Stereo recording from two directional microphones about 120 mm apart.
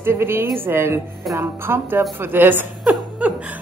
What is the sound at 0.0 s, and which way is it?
A woman's voice, 20° right (ahead or behind).